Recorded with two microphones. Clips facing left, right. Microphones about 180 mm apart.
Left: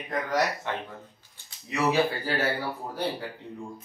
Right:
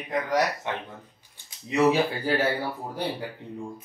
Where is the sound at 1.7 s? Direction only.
20° right (ahead or behind).